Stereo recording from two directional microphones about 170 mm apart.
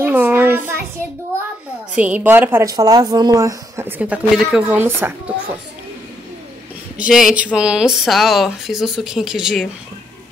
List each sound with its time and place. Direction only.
0.0 s a sound: 10° right (ahead or behind)
2.0 s speech: 10° right (ahead or behind)
4.0 s speech: 5° right (ahead or behind)
7.0 s speech: 5° right (ahead or behind)